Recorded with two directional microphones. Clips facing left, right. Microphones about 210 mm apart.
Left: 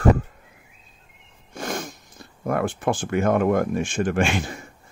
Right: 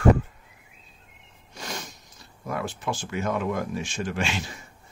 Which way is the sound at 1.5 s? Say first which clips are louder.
Left 8 dB; 50° left (ahead or behind).